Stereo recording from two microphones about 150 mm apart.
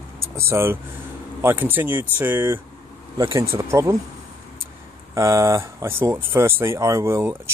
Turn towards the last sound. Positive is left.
turn(degrees=-15)  # may be behind; listen again after turning